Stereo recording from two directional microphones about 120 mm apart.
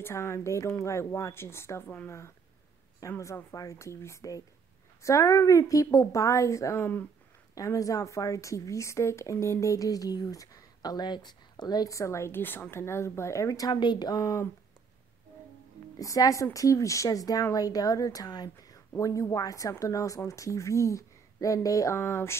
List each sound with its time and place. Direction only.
0.0 s a woman's voice: 20° left (ahead or behind)
3.0 s speech: 25° left (ahead or behind)
16.0 s speech: 30° left (ahead or behind)